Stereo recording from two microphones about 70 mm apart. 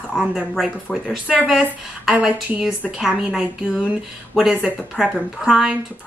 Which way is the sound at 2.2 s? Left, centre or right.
Centre.